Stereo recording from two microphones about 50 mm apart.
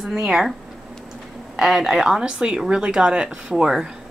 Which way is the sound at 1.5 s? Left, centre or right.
Centre.